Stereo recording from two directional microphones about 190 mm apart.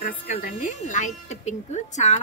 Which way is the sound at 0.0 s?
45° left (ahead or behind).